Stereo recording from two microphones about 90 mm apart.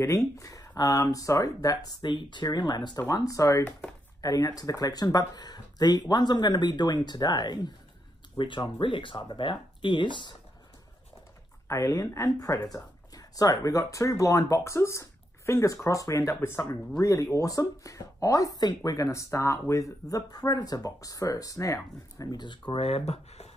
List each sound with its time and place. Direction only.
0.0 s speech: 35° left (ahead or behind); by 3.0 s 55° left (ahead or behind)
3.1 s speech: 40° left (ahead or behind)
8.4 s speech: 65° left (ahead or behind)
11.6 s speech: 35° left (ahead or behind)
18.9 s speech: 35° left (ahead or behind); by 23.0 s 90° left